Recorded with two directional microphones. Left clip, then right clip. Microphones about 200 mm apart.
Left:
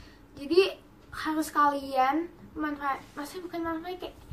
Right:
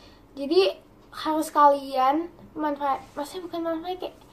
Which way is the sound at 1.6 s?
5° left (ahead or behind).